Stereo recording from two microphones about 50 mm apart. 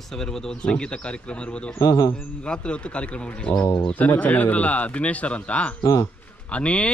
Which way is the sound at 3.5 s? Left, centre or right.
Left.